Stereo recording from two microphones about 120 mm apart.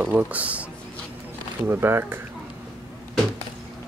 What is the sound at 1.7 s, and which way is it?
Speech, 20° right (ahead or behind).